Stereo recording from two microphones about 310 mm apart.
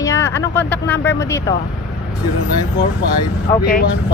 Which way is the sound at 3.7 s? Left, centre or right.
Left.